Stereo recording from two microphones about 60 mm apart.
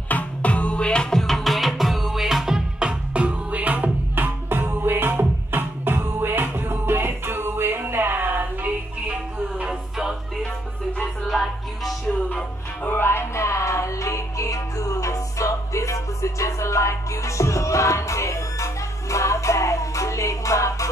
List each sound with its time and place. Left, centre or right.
0.1 s music: left
1.2 s music: centre; by 8.5 s right
9.7 s music: centre
11.2 s music: centre
12.8 s music: left